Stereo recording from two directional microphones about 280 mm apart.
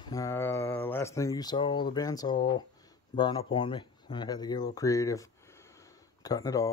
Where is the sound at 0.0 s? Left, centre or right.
Centre.